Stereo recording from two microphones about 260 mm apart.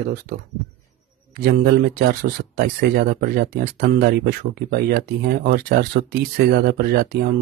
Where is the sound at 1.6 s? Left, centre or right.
Right.